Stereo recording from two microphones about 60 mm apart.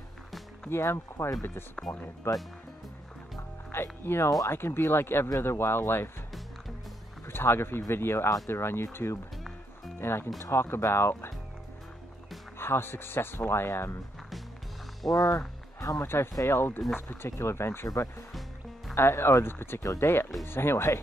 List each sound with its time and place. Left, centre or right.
0.7 s speech: left
1.8 s speech: centre
2.3 s speech: left
3.7 s speech: left
7.2 s speech: left
12.5 s speech: left
15.0 s speech: left
16.0 s speech: left
17.8 s speech: left
18.9 s speech: left